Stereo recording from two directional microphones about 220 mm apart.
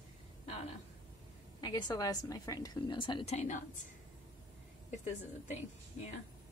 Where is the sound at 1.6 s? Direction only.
20° left (ahead or behind).